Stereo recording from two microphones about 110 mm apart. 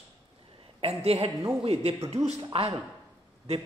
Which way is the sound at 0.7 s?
65° right (ahead or behind).